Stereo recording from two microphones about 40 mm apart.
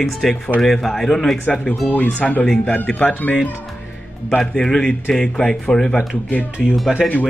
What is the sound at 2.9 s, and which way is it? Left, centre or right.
Speech, centre.